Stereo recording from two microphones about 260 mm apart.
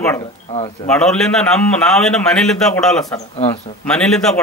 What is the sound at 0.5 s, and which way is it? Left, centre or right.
Speech, left.